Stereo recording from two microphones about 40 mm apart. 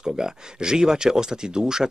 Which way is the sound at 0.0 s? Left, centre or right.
Centre.